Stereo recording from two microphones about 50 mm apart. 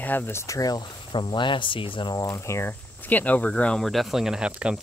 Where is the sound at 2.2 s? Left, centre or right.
Left.